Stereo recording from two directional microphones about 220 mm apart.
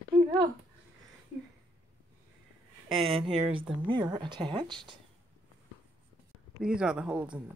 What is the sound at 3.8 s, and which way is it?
Speech, 20° right (ahead or behind).